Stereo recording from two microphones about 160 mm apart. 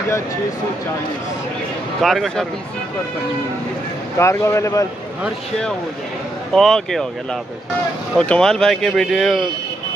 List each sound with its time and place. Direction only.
2.0 s speech: centre (ahead or behind)
4.2 s speech: 20° left (ahead or behind)
6.5 s speech: centre (ahead or behind)
8.2 s speech: 5° left (ahead or behind)